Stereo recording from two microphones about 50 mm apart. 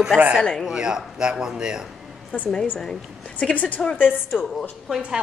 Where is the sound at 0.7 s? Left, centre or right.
Centre.